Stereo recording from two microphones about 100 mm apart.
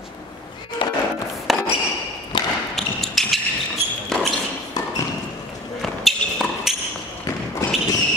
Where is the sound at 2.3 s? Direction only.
55° left (ahead or behind).